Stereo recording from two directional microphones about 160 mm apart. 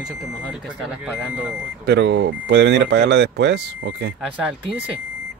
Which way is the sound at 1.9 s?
90° right.